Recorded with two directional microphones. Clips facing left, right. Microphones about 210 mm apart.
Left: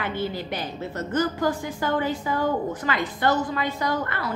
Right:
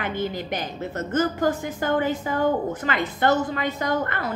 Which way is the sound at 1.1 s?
45° right (ahead or behind).